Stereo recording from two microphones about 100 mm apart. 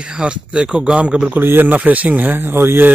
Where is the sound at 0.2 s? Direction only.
10° right (ahead or behind).